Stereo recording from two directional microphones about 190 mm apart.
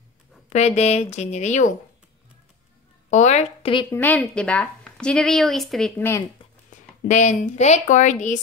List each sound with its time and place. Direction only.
0.5 s a woman's voice: 35° left (ahead or behind)
3.1 s a woman's voice: 40° left (ahead or behind)
3.9 s a woman's voice: 10° left (ahead or behind)
7.1 s a woman's voice: 40° left (ahead or behind)